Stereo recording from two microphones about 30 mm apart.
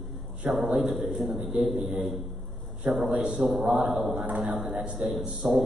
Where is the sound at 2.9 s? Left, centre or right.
Right.